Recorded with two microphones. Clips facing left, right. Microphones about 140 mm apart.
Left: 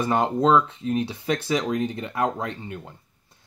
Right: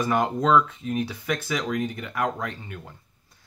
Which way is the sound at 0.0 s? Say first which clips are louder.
Left 2 dB; 25° left (ahead or behind).